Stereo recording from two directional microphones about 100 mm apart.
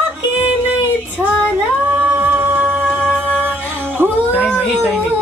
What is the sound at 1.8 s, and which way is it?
Music, 15° right (ahead or behind).